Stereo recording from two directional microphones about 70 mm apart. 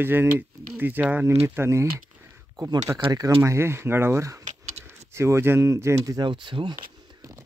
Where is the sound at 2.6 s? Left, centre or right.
Right.